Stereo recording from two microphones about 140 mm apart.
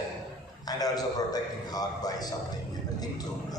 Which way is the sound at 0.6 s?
25° left (ahead or behind).